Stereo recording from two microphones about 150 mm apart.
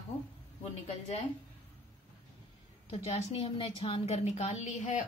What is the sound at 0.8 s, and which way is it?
Speech, 45° left (ahead or behind).